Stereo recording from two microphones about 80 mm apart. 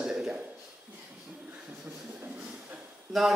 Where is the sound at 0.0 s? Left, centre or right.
Centre.